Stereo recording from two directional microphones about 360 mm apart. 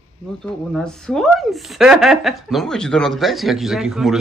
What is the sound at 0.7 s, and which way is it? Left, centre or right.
Speech, centre.